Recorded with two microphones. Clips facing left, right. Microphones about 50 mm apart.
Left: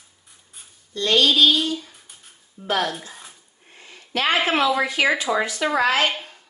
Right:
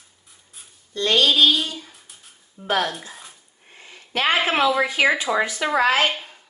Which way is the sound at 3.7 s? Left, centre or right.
Right.